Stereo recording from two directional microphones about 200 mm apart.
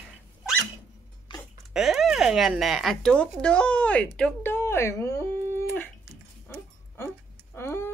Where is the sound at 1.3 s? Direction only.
25° left (ahead or behind).